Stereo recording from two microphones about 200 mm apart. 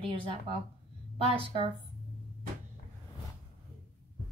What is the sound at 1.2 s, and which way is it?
Speech, 30° right (ahead or behind).